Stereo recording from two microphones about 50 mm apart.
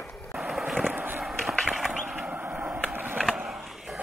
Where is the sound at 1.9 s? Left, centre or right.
Centre.